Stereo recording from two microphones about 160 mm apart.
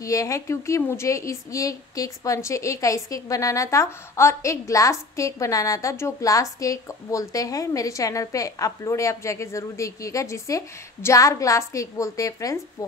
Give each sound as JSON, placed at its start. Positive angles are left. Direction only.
{"t": 0.0, "sound": "speech", "side_deg": 20}